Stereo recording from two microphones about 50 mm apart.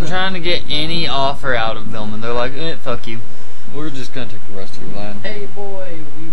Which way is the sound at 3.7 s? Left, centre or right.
Centre.